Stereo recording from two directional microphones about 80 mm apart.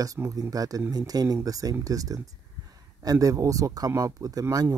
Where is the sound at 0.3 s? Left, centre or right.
Right.